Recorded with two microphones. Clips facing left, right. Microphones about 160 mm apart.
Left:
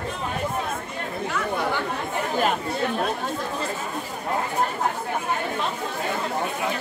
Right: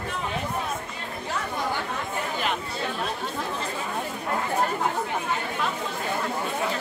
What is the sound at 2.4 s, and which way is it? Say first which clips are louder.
Chatter: left 5 dB; 45° left (ahead or behind).